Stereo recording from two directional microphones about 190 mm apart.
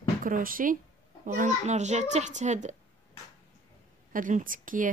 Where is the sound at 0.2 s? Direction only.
45° right (ahead or behind).